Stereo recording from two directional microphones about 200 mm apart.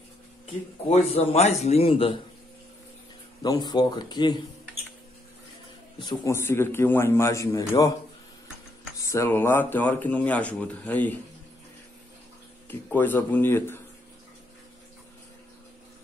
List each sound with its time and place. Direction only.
0.8 s speech: 30° left (ahead or behind)
3.4 s speech: 20° left (ahead or behind)
5.9 s speech: 20° left (ahead or behind)
9.0 s speech: 15° left (ahead or behind)
12.6 s speech: 10° left (ahead or behind)